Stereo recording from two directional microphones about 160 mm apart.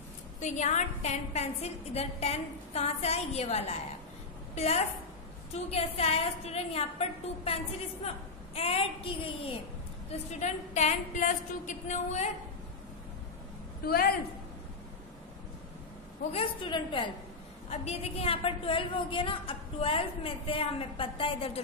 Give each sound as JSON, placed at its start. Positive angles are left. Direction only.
{"t": 0.4, "sound": "a woman's voice", "side_deg": 45}
{"t": 5.5, "sound": "a woman's voice", "side_deg": 40}
{"t": 8.5, "sound": "a woman's voice", "side_deg": 40}
{"t": 13.8, "sound": "a man's voice", "side_deg": 70}
{"t": 16.2, "sound": "a woman's voice", "side_deg": 40}